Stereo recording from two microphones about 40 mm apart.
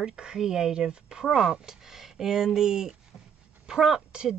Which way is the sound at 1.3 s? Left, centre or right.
Centre.